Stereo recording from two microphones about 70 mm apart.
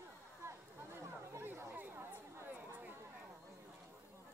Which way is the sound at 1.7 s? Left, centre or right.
Right.